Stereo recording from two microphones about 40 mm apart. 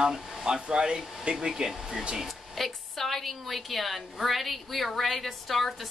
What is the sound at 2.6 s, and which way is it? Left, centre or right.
A woman's voice, centre.